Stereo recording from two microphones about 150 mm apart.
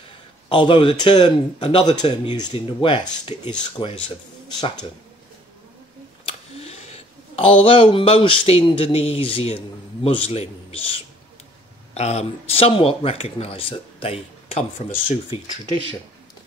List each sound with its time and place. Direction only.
0.5 s speech: 30° left (ahead or behind)
6.2 s speech: 45° left (ahead or behind)